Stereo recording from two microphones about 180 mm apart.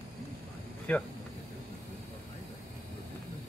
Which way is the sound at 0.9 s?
10° left (ahead or behind).